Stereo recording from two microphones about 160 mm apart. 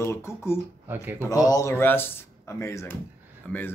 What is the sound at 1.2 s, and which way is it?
Speech, 20° left (ahead or behind).